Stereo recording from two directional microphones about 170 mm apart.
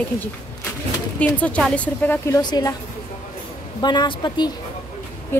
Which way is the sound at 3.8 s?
25° left (ahead or behind).